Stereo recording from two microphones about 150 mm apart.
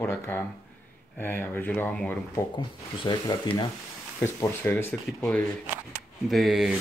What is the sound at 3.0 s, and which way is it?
Speech, 30° left (ahead or behind).